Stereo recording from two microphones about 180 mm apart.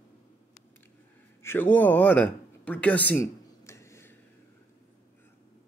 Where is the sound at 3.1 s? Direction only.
15° left (ahead or behind).